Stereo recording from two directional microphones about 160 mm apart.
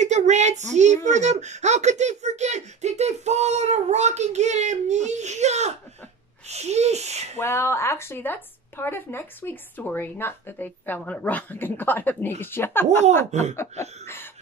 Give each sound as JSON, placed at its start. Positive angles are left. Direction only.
{"t": 0.0, "sound": "speech", "side_deg": -45}
{"t": 7.3, "sound": "speech", "side_deg": 15}
{"t": 13.3, "sound": "speech", "side_deg": -45}
{"t": 14.0, "sound": "cough", "side_deg": 15}